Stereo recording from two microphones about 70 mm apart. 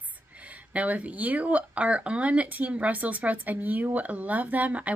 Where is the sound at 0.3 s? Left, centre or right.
Centre.